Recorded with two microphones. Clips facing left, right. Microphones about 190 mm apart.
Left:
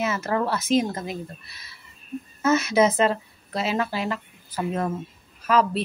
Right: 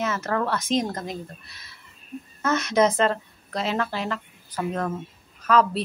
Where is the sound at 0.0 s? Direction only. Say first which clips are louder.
Left 1 dB; 10° left (ahead or behind).